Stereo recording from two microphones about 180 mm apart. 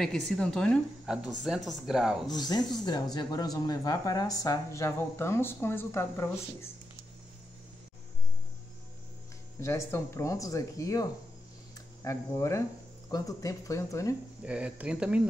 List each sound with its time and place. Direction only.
0.0 s a woman's voice: 5° left (ahead or behind)
2.2 s speech: 20° left (ahead or behind)
9.6 s speech: 15° left (ahead or behind)
14.4 s speech: 5° right (ahead or behind)